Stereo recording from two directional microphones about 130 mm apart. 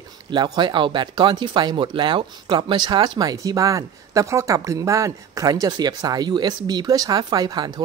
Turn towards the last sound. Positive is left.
turn(degrees=-35)  # may be behind; listen again after turning